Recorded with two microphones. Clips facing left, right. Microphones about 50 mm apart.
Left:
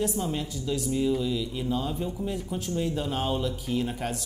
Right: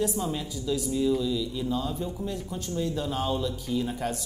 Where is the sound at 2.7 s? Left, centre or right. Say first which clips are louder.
Even; left.